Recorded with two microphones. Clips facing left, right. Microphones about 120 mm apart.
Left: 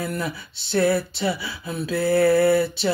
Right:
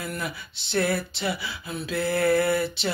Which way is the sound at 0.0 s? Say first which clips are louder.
Left 5 dB; 35° left (ahead or behind).